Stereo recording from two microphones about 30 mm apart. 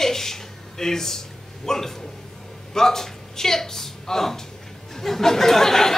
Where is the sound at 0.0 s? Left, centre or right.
Centre.